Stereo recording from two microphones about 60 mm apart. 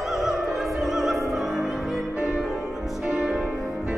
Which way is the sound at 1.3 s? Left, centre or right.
Centre.